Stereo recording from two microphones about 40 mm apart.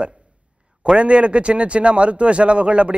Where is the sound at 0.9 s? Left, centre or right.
Right.